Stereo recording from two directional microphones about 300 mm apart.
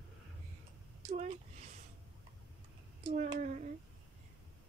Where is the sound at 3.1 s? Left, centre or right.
Right.